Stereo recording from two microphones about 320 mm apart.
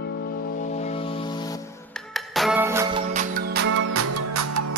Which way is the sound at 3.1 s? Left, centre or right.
Right.